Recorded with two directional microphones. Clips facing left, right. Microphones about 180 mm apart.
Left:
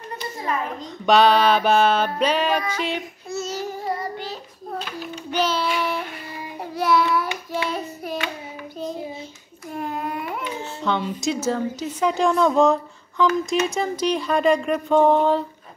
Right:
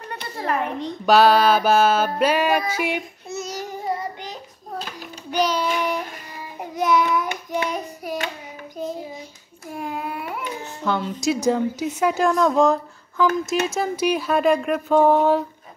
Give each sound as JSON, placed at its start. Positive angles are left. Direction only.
{"t": 0.1, "sound": "a child's voice", "side_deg": -65}
{"t": 1.0, "sound": "speech", "side_deg": -5}
{"t": 2.1, "sound": "music", "side_deg": -10}
{"t": 3.3, "sound": "child singing", "side_deg": -15}
{"t": 5.8, "sound": "a sound", "side_deg": -15}
{"t": 6.6, "sound": "child singing", "side_deg": -15}
{"t": 7.7, "sound": "hands", "side_deg": -10}
{"t": 9.8, "sound": "baby cry", "side_deg": -10}
{"t": 11.0, "sound": "speech", "side_deg": 0}
{"t": 11.3, "sound": "speech", "side_deg": -15}